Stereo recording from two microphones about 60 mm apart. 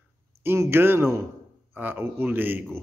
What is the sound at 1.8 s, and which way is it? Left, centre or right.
Speech, right.